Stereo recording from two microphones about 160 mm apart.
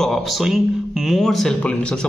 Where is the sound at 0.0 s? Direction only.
Centre (ahead or behind).